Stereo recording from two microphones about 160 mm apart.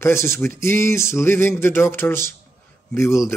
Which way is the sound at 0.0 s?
15° left (ahead or behind).